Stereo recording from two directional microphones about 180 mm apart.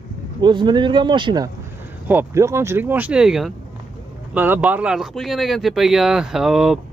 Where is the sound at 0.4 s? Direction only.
25° right (ahead or behind).